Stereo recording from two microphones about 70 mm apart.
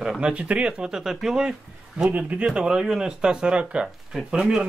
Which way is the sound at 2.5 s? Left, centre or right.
Centre.